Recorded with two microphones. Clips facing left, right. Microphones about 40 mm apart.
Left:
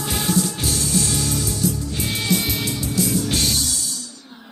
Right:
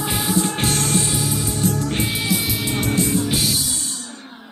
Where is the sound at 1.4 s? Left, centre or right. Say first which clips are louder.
Right 1 dB; right.